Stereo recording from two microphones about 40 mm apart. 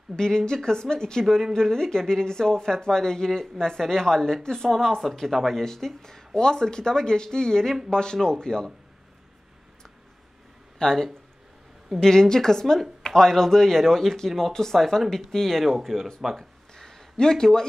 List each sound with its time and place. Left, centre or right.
0.1 s speech: centre
10.8 s speech: centre
16.7 s a sound: centre